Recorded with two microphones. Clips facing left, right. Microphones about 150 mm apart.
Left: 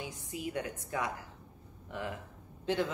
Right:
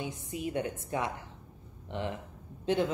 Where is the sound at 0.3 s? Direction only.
20° right (ahead or behind).